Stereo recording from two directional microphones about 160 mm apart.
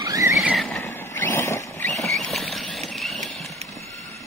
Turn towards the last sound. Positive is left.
turn(degrees=0)  # may be behind; listen again after turning